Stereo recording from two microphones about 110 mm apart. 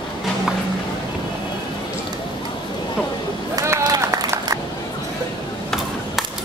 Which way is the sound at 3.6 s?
30° right (ahead or behind).